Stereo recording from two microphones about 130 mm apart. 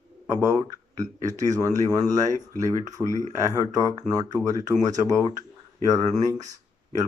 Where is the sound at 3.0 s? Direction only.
5° right (ahead or behind).